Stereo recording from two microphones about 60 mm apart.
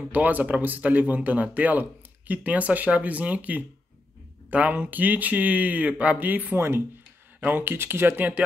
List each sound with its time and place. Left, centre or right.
0.1 s speech: right